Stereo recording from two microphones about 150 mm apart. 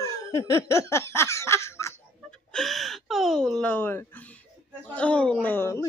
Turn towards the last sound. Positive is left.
turn(degrees=20)  # may be behind; listen again after turning